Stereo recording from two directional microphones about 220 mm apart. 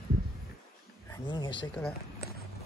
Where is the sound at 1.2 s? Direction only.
20° left (ahead or behind).